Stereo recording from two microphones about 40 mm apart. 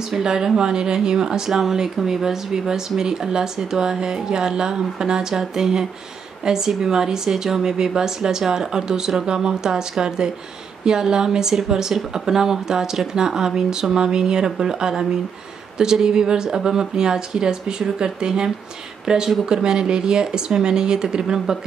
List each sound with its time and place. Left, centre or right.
0.2 s speech: centre